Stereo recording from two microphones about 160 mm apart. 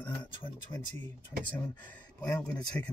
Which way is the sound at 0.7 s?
20° left (ahead or behind).